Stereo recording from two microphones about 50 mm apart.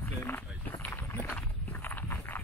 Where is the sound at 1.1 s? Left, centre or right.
Left.